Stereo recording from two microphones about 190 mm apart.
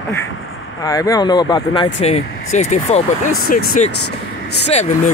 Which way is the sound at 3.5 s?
50° left (ahead or behind).